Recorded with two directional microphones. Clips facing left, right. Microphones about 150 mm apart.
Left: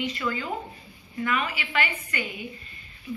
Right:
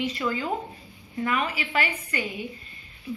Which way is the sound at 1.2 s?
35° right (ahead or behind).